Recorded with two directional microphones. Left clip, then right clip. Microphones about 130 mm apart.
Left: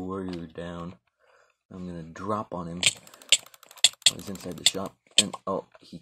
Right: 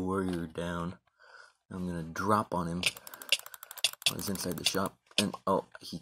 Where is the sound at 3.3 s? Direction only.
10° left (ahead or behind).